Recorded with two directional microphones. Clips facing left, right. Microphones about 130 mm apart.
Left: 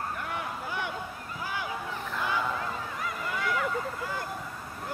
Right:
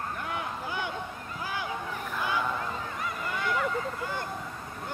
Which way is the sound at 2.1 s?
5° right (ahead or behind).